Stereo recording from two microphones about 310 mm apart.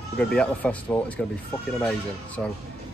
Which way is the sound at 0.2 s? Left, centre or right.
Centre.